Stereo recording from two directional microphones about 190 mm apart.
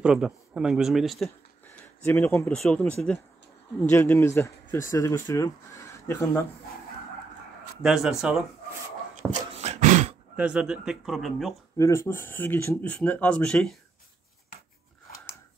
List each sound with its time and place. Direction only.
0.0 s speech: 5° right (ahead or behind); by 6.4 s 15° left (ahead or behind)
7.8 s speech: centre (ahead or behind)
9.6 s a sound: 40° right (ahead or behind)
10.3 s speech: 5° right (ahead or behind)
11.7 s speech: 15° left (ahead or behind)